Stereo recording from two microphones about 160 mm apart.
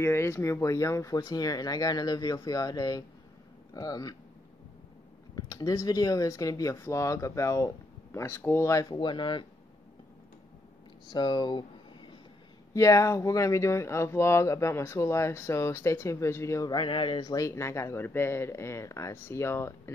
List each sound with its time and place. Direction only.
0.0 s speech: 15° left (ahead or behind)
5.3 s speech: 25° left (ahead or behind)
11.1 s speech: 30° left (ahead or behind)
12.7 s speech: 20° left (ahead or behind)